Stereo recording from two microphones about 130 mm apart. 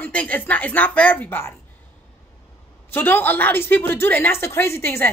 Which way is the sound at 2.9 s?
15° left (ahead or behind).